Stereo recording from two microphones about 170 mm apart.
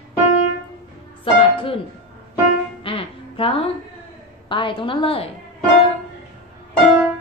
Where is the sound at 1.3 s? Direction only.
30° left (ahead or behind).